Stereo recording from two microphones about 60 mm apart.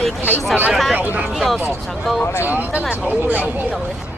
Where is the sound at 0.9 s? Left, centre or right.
Right.